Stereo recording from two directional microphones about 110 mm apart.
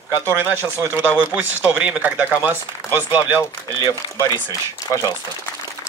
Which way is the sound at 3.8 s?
30° left (ahead or behind).